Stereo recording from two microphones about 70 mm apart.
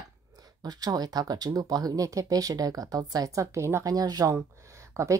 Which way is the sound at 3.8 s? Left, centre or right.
Right.